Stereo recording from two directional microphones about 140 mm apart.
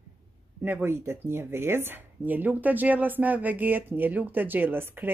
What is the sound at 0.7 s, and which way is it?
Speech, 15° right (ahead or behind).